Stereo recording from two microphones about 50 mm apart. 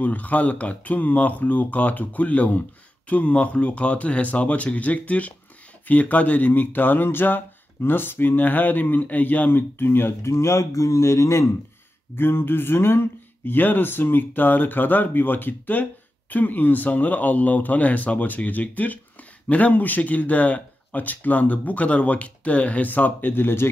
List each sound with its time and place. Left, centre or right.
0.0 s speech: left
10.2 s speech: left
12.2 s speech: left
23.3 s speech: left